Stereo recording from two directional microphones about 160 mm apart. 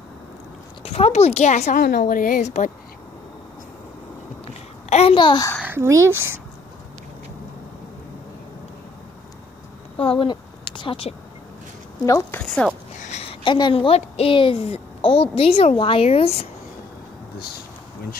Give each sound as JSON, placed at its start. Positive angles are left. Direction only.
{"t": 0.8, "sound": "a woman's voice", "side_deg": 40}
{"t": 1.9, "sound": "a woman's voice", "side_deg": 65}
{"t": 4.8, "sound": "babbling", "side_deg": 45}
{"t": 5.1, "sound": "a child's voice", "side_deg": 30}
{"t": 5.6, "sound": "speech", "side_deg": -15}
{"t": 9.9, "sound": "a sound", "side_deg": 35}
{"t": 12.1, "sound": "a child's voice", "side_deg": 20}
{"t": 12.4, "sound": "speech", "side_deg": 5}
{"t": 13.0, "sound": "a woman's voice", "side_deg": 40}